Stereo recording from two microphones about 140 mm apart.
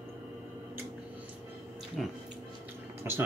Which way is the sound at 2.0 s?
Centre (ahead or behind).